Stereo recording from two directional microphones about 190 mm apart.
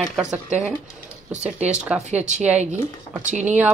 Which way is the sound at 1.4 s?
5° right (ahead or behind).